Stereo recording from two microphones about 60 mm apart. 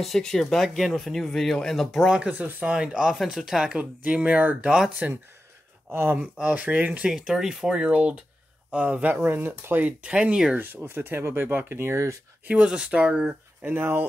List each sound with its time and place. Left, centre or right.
0.0 s speech: centre
2.1 s speech: right; by 3.7 s centre
3.7 s speech: centre
4.6 s speech: centre
5.9 s speech: right
6.4 s speech: right
7.1 s speech: centre; by 9.9 s right
10.0 s speech: centre
10.5 s speech: right
12.4 s speech: centre; by 14.0 s right